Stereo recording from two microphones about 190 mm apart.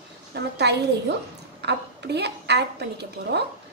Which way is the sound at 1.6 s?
60° right (ahead or behind).